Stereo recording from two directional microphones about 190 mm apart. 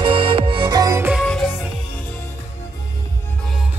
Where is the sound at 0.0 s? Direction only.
30° right (ahead or behind).